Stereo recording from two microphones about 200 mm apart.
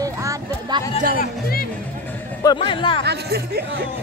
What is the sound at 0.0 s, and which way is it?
Music, 15° right (ahead or behind).